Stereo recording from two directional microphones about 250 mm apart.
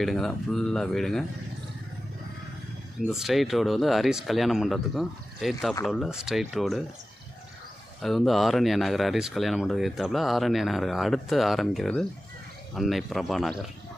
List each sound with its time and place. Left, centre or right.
0.0 s speech: centre
3.1 s speech: centre
8.0 s speech: centre